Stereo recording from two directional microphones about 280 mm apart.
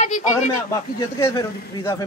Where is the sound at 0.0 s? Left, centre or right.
Left.